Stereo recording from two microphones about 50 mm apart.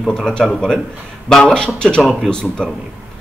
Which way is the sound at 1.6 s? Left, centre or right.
Centre.